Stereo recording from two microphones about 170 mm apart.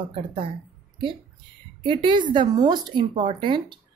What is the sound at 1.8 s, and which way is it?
A woman's voice, 30° right (ahead or behind).